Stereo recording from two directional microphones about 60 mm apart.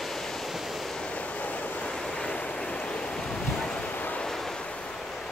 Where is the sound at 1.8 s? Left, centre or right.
Centre.